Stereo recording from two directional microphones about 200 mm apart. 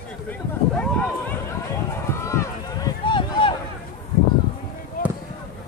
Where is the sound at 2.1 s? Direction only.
15° left (ahead or behind).